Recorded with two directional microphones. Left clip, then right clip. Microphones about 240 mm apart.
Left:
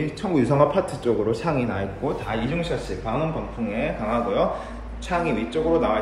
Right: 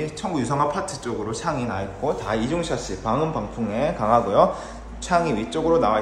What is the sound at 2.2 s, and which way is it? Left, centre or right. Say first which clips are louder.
A man's voice: right 2 dB; centre.